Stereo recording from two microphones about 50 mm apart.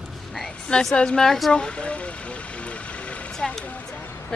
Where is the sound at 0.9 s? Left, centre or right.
Centre.